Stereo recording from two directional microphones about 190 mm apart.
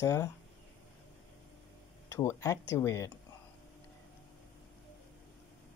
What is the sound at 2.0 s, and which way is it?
Speech, 15° left (ahead or behind).